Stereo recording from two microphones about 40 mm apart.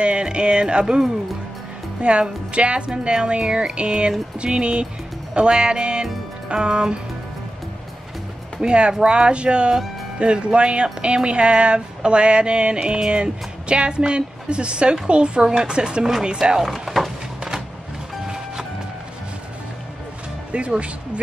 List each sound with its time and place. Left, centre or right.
0.0 s a woman's voice: right
8.5 s a woman's voice: right
16.6 s speech: centre
18.2 s music: centre
20.5 s a woman's voice: right